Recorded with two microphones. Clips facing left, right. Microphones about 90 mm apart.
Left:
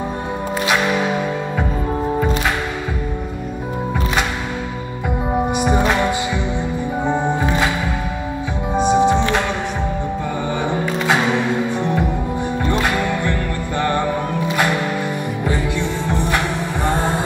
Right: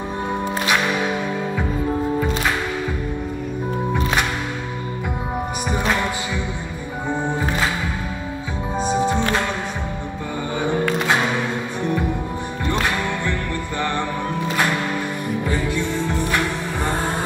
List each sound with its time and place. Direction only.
5.6 s music: 15° left (ahead or behind)
8.8 s music: 20° left (ahead or behind)